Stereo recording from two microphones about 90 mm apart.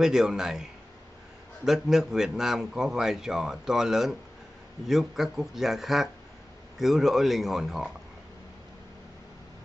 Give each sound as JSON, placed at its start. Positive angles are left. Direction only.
{"t": 0.0, "sound": "a man's voice", "side_deg": -5}